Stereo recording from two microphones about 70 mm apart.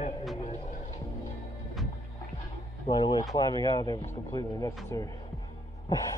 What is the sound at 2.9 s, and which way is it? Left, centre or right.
Speech, left.